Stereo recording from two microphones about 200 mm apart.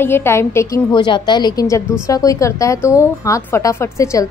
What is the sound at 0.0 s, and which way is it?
A woman's voice, 10° left (ahead or behind).